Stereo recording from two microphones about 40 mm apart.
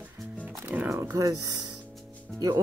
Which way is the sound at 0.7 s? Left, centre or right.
Right.